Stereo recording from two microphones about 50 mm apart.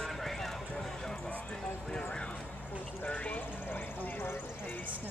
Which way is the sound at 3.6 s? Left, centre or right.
Left.